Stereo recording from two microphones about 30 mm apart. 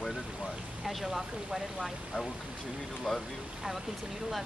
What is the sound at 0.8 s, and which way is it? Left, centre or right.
Speech, centre.